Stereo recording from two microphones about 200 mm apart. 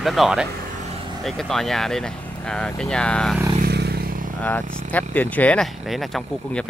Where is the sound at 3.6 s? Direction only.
55° right (ahead or behind).